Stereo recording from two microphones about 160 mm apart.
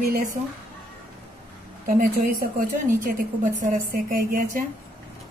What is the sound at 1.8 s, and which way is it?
A woman's voice, 60° right (ahead or behind).